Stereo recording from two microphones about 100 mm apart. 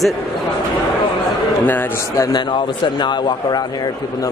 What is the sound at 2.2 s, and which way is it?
A man's voice, 50° left (ahead or behind).